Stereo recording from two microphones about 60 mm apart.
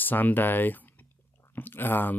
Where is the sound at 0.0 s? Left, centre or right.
Left.